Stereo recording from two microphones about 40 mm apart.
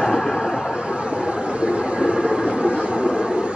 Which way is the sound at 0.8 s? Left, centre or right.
Right.